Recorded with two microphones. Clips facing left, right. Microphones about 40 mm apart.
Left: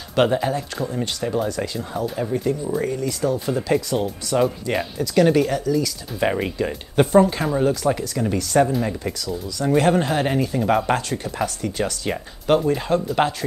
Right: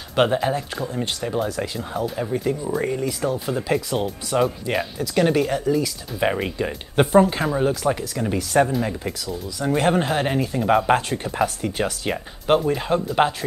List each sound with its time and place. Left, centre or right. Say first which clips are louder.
0.1 s speech: even; centre
2.8 s speech: even; centre
3.3 s speech: left 2 dB; centre
4.4 s speech: even; centre